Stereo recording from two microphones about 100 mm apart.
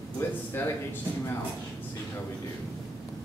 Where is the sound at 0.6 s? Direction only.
20° left (ahead or behind).